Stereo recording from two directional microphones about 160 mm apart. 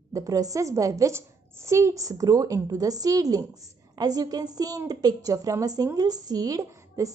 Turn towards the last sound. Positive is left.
turn(degrees=-20)  # may be behind; listen again after turning